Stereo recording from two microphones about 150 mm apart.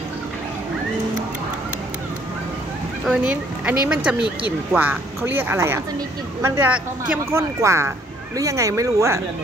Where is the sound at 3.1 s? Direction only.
5° right (ahead or behind).